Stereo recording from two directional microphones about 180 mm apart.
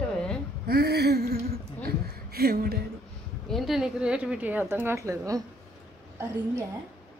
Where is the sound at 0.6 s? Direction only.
60° right (ahead or behind).